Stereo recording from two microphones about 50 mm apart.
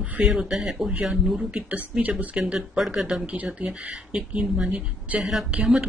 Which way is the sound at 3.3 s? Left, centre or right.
Right.